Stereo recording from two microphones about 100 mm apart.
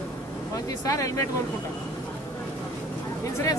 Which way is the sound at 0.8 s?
35° left (ahead or behind).